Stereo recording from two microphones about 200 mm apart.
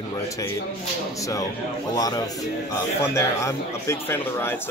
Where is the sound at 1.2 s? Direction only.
15° left (ahead or behind).